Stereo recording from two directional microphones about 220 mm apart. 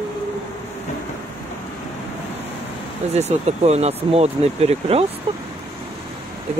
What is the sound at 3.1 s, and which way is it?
Speech, 30° right (ahead or behind).